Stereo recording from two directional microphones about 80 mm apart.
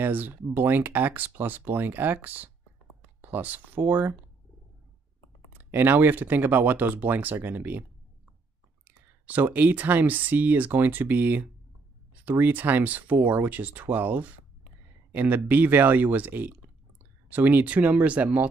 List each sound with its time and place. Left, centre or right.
0.0 s speech: right
5.6 s speech: right
8.8 s speech: centre